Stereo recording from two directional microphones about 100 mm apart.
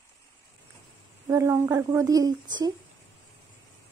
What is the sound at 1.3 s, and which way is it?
Speech, 30° right (ahead or behind).